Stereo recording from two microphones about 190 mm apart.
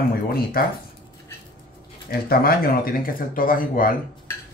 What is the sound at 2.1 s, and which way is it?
Speech, 50° left (ahead or behind).